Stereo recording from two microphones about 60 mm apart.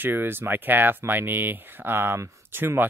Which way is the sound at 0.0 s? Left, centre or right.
Right.